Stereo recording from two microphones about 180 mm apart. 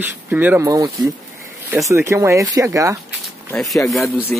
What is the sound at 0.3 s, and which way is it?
Speech, 10° right (ahead or behind).